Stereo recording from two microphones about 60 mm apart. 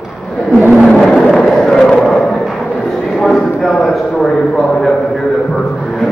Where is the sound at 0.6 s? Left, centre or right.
Right.